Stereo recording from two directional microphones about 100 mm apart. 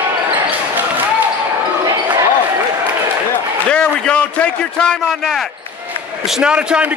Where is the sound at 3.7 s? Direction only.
10° left (ahead or behind).